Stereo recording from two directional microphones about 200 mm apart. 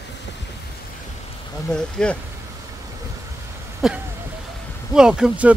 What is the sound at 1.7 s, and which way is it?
Speech, 5° left (ahead or behind).